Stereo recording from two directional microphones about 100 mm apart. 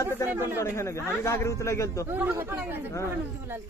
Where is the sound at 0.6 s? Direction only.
30° left (ahead or behind).